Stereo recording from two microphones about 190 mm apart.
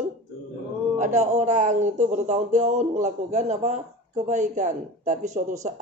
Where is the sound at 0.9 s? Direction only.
40° right (ahead or behind).